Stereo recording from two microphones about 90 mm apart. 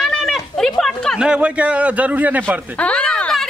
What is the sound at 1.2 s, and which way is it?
A woman's voice, 10° right (ahead or behind).